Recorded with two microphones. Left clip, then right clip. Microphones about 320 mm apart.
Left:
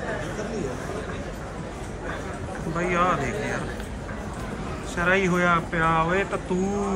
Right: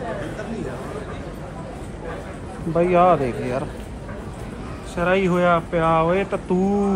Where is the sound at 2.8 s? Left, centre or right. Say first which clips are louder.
Right 8 dB; centre.